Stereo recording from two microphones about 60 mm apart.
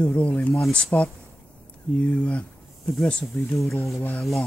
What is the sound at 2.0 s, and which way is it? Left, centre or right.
Speech, left.